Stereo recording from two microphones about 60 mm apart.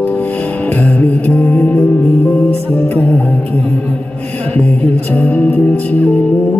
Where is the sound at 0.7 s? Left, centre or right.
Left.